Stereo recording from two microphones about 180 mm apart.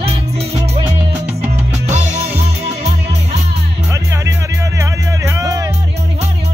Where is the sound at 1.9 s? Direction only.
35° right (ahead or behind).